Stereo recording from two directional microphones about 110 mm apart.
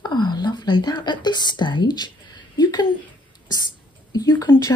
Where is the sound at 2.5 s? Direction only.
40° left (ahead or behind).